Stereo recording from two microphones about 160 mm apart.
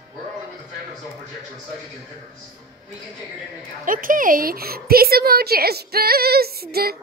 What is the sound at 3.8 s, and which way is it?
A woman's voice, 60° right (ahead or behind).